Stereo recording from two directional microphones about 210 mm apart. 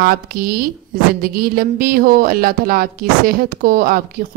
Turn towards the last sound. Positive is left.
turn(degrees=-40)  # may be behind; listen again after turning